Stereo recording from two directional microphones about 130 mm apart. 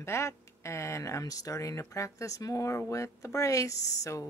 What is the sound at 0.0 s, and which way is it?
Speech, 20° left (ahead or behind).